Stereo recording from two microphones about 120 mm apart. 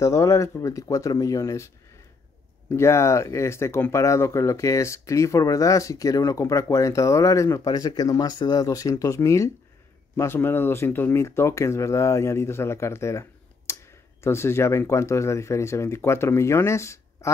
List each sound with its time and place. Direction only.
0.0 s speech: 25° left (ahead or behind)
2.7 s speech: 25° left (ahead or behind)